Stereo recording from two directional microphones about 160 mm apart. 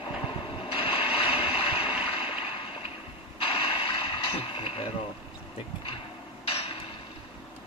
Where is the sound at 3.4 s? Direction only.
35° left (ahead or behind).